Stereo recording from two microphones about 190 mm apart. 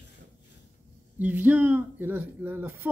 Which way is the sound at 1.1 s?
10° right (ahead or behind).